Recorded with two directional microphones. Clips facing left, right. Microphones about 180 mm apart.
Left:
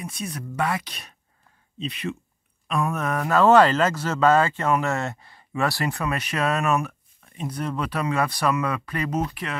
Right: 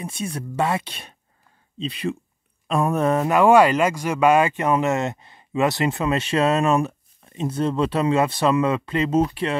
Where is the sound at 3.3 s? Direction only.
10° right (ahead or behind).